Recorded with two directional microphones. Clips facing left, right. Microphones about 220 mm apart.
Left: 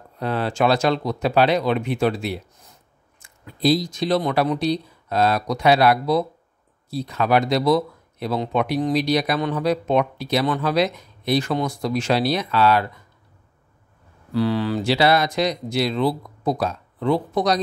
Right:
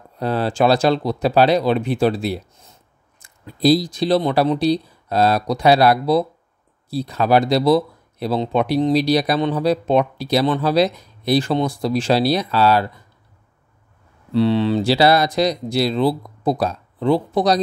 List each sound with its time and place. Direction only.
0.2 s speech: 35° right (ahead or behind)
14.3 s speech: 25° right (ahead or behind)